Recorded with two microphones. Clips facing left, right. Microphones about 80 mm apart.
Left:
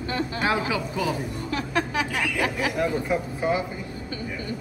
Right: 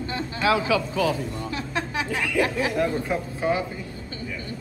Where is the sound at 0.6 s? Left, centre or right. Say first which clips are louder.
Right 3 dB; centre.